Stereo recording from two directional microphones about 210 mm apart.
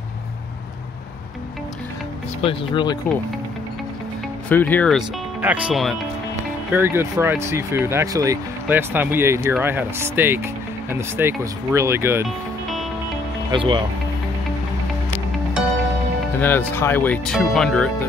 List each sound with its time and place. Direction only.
2.4 s speech: 20° left (ahead or behind)
4.5 s speech: 10° left (ahead or behind)
5.4 s speech: 5° right (ahead or behind)
13.5 s speech: 25° right (ahead or behind)
16.3 s speech: 10° left (ahead or behind)